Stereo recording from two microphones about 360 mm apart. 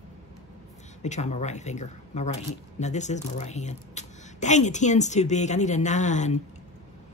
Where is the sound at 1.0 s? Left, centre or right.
Centre.